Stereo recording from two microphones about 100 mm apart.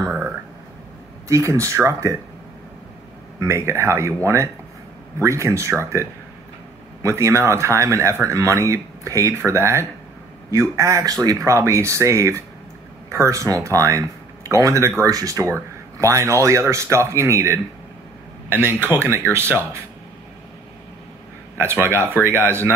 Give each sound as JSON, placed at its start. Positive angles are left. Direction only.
{"t": 1.3, "sound": "speech", "side_deg": -30}
{"t": 3.3, "sound": "speech", "side_deg": -30}
{"t": 21.5, "sound": "speech", "side_deg": -25}